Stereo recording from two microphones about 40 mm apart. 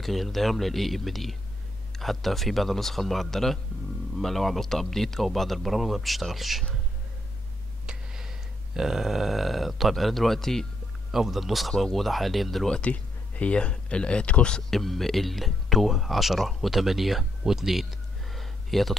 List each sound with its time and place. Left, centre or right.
0.0 s speech: centre
7.8 s a sound: centre
8.7 s speech: centre
11.1 s speech: centre
12.8 s speech: left
14.7 s speech: centre
18.3 s a sound: centre